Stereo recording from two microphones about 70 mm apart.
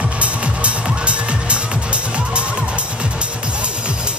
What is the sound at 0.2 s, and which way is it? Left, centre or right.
Music, centre.